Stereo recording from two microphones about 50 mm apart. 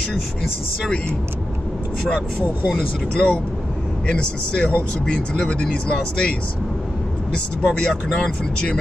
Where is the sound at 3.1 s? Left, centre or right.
Left.